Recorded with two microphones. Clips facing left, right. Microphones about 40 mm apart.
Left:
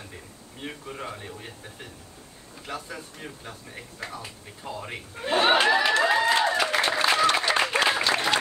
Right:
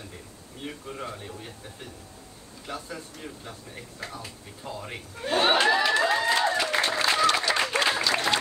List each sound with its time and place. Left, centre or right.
0.0 s speech: centre
5.5 s a sound: centre
7.2 s applause: left